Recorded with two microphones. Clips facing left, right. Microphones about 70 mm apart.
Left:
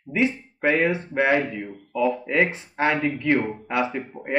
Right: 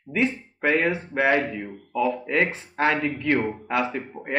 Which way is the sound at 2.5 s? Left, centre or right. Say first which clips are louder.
Even; centre.